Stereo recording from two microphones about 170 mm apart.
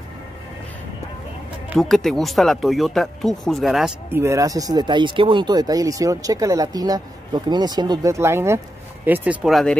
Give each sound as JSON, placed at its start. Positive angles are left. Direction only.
{"t": 1.8, "sound": "speech", "side_deg": 0}
{"t": 4.1, "sound": "speech", "side_deg": -15}